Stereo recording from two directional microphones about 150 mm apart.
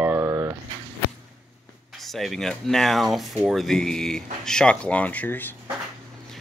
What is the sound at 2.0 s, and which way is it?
Speech, centre (ahead or behind).